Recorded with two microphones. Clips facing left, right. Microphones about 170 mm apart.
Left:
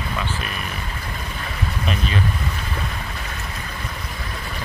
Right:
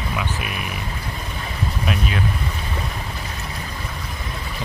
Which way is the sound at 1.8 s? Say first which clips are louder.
Even; 5° right (ahead or behind).